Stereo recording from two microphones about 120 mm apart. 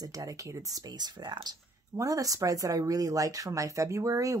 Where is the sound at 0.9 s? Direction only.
35° right (ahead or behind).